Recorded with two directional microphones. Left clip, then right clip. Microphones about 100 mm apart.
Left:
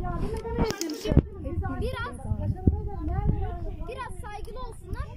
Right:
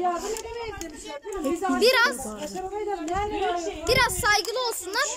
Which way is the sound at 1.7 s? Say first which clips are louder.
Right 16 dB; 75° right (ahead or behind).